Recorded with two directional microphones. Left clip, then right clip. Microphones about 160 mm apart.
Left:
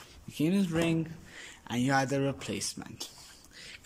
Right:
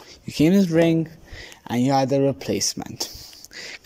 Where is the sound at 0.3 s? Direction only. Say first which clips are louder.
Right 12 dB; 40° right (ahead or behind).